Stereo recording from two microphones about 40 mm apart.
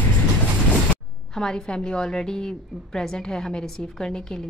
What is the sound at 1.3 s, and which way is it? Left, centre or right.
A woman's voice, centre.